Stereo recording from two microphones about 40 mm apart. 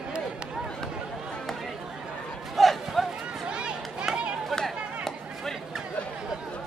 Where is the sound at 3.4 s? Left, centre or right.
Right.